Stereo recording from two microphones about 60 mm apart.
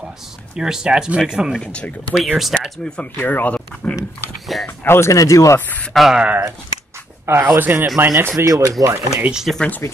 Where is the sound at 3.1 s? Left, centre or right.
Left.